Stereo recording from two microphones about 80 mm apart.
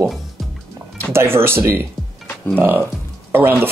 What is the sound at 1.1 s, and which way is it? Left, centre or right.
Speech, right.